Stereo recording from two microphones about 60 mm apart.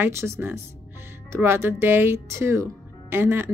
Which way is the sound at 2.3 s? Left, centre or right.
Right.